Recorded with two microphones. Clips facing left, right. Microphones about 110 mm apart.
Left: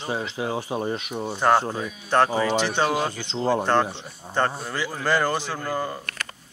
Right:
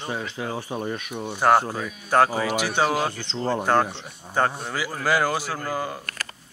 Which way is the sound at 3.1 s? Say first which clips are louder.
Left 3 dB; 15° left (ahead or behind).